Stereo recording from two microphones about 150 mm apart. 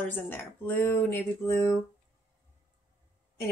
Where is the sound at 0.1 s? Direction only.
10° left (ahead or behind).